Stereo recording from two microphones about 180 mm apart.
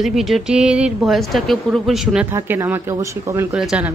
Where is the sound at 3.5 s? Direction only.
5° right (ahead or behind).